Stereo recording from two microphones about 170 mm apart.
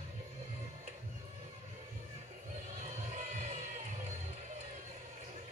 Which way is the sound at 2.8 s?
45° right (ahead or behind).